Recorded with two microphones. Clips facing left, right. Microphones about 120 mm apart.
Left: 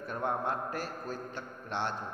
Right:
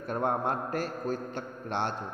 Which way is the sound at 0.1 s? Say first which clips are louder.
Right 4 dB; 55° right (ahead or behind).